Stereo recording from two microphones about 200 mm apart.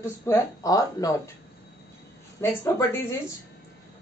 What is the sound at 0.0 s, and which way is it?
Speech, 15° left (ahead or behind).